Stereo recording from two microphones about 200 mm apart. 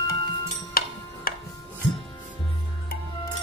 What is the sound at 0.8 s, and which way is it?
Music, 50° left (ahead or behind).